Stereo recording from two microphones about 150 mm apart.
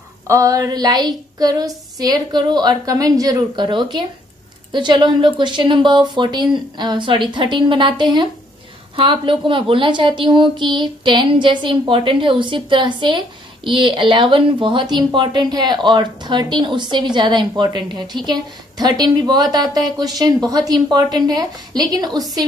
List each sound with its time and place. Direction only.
0.3 s a woman's voice: 20° right (ahead or behind)